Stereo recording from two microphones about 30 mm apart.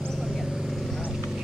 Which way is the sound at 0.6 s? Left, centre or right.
Centre.